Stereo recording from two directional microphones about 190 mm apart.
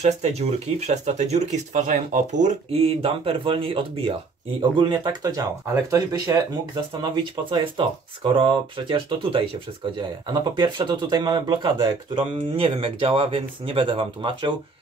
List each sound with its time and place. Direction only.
0.0 s speech: 35° right (ahead or behind); by 6.4 s 20° right (ahead or behind)
7.5 s speech: 25° right (ahead or behind)